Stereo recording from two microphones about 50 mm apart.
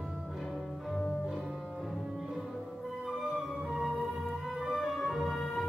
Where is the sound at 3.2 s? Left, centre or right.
Centre.